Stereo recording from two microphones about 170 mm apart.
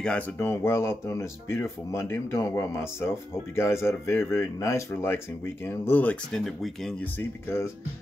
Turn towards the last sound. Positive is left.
turn(degrees=15)  # may be behind; listen again after turning